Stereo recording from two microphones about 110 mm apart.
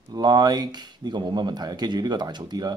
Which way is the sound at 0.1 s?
40° right (ahead or behind).